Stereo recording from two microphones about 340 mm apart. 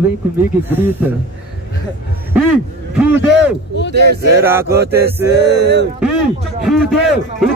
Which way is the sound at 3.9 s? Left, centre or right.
Right.